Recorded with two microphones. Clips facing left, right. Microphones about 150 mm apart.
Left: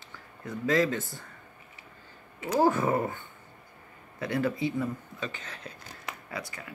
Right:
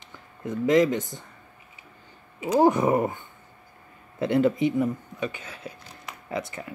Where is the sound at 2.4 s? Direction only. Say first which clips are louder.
Right 5 dB; 15° right (ahead or behind).